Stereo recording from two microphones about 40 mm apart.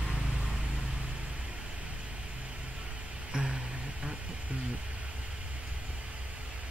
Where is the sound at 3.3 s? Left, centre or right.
Right.